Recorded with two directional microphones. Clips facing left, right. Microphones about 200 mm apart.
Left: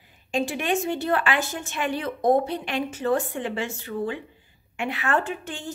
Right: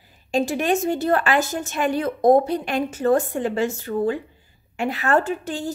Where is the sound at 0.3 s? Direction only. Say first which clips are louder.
Right 4 dB; 40° right (ahead or behind).